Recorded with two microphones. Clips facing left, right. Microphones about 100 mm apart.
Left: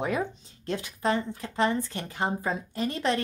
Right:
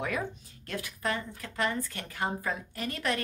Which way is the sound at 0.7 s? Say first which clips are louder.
Left 6 dB; 25° left (ahead or behind).